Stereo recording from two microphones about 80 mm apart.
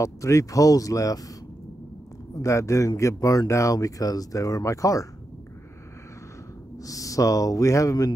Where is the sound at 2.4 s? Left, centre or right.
Left.